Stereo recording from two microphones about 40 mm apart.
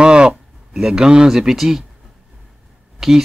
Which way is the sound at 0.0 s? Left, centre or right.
Right.